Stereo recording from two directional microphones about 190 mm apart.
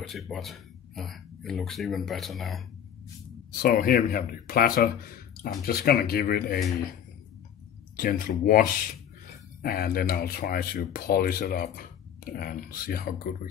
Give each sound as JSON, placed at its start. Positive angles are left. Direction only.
{"t": 0.1, "sound": "speech", "side_deg": 0}
{"t": 3.6, "sound": "speech", "side_deg": 50}
{"t": 7.9, "sound": "speech", "side_deg": 50}